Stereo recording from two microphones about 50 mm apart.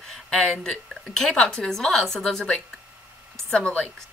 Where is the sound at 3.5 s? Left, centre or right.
Left.